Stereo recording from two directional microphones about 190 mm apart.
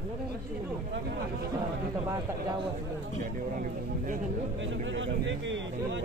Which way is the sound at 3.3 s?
45° right (ahead or behind).